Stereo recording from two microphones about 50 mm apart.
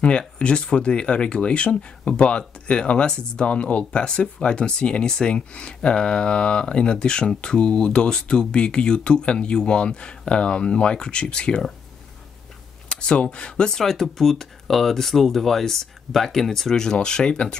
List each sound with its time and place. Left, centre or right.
0.4 s speech: left
12.8 s speech: centre
13.7 s speech: centre